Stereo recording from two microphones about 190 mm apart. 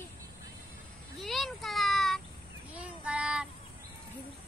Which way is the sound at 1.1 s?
Centre (ahead or behind).